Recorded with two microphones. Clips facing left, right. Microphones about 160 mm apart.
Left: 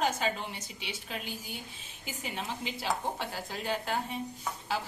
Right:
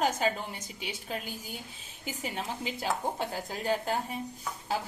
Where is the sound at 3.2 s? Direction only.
40° right (ahead or behind).